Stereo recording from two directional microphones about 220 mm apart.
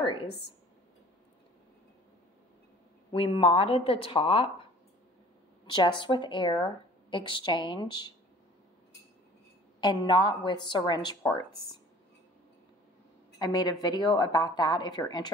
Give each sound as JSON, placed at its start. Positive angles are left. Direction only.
{"t": 0.0, "sound": "a sound", "side_deg": 25}
{"t": 3.1, "sound": "speech", "side_deg": 25}
{"t": 5.7, "sound": "speech", "side_deg": 20}
{"t": 9.8, "sound": "speech", "side_deg": 20}
{"t": 13.4, "sound": "speech", "side_deg": 20}